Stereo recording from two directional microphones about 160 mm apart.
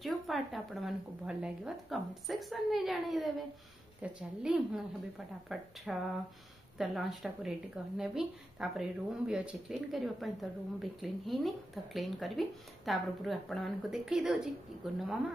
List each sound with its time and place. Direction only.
0.0 s a woman's voice: centre (ahead or behind)